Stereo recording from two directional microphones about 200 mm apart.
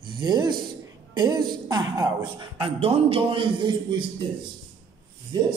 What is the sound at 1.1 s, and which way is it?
A man's voice, 20° right (ahead or behind).